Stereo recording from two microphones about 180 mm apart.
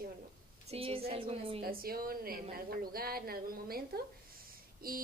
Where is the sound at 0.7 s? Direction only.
30° right (ahead or behind).